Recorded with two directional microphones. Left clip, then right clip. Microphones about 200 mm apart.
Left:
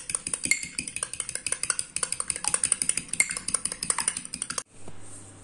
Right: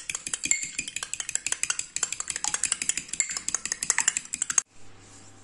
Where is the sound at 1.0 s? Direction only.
15° right (ahead or behind).